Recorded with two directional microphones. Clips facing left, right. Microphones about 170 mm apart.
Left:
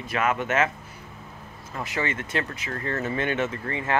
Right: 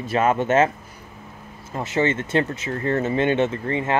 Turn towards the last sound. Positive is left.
turn(degrees=-25)  # may be behind; listen again after turning